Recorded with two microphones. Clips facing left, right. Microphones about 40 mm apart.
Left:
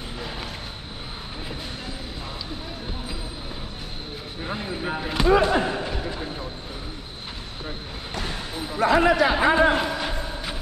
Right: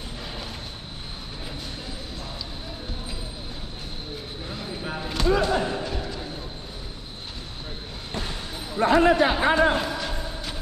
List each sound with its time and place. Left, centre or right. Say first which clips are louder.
4.5 s a sound: left 5 dB; left
8.8 s speech: even; left
9.3 s music: left 2 dB; left